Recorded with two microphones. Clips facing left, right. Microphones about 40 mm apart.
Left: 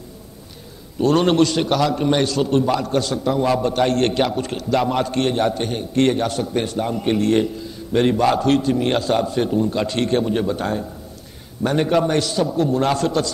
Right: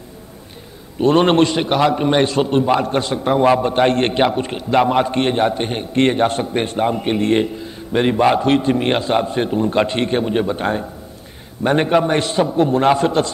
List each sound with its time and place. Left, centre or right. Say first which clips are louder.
0.9 s a man's voice: right 3 dB; right